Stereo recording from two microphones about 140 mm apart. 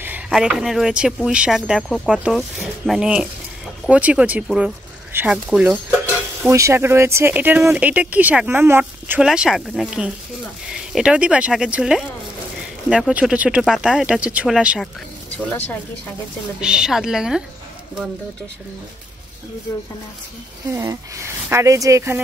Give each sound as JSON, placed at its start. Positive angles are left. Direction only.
{"t": 0.3, "sound": "speech", "side_deg": -5}
{"t": 6.5, "sound": "speech", "side_deg": -20}
{"t": 16.6, "sound": "speech", "side_deg": -5}
{"t": 20.7, "sound": "speech", "side_deg": -25}